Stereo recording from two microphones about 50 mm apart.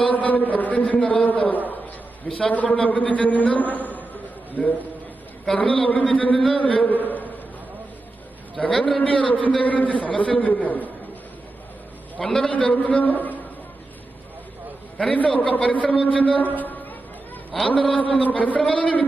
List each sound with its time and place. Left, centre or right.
0.0 s a man's voice: left
8.8 s a man's voice: left
12.2 s a man's voice: centre
12.4 s a man's voice: left
15.1 s a man's voice: left
17.7 s a man's voice: left